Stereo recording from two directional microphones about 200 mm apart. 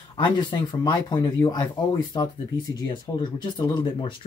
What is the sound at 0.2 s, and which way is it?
Speech, 25° left (ahead or behind).